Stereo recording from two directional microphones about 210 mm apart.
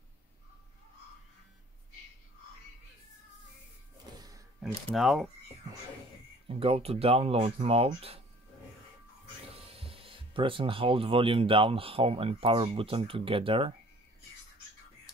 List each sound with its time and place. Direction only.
4.9 s speech: centre (ahead or behind)
6.4 s speech: 25° right (ahead or behind)
9.7 s speech: 25° right (ahead or behind)